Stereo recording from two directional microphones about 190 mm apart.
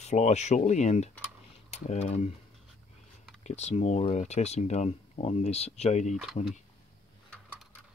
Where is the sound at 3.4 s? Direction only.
35° left (ahead or behind).